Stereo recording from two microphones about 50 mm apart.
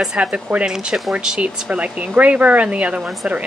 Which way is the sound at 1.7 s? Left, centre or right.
Right.